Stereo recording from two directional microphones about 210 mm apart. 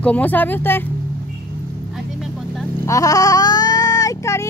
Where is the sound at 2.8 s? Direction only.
15° left (ahead or behind).